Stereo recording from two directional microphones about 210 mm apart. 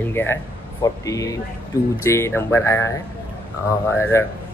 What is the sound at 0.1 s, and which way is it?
Speech, 10° left (ahead or behind).